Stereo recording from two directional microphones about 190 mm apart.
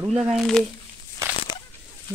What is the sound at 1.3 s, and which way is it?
Crushing, 25° left (ahead or behind).